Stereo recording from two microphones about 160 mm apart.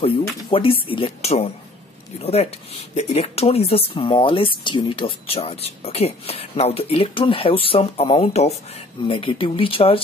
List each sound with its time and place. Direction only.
0.5 s a woman's voice: 35° left (ahead or behind)